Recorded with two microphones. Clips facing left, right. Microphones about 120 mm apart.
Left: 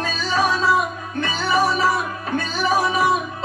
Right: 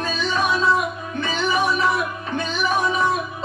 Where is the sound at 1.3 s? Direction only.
40° left (ahead or behind).